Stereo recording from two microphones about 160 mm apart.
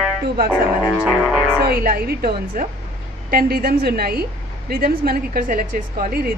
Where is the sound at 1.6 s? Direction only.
70° right (ahead or behind).